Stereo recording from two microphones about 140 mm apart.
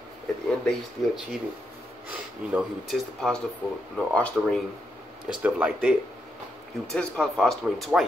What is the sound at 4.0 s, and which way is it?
Speech, 5° left (ahead or behind).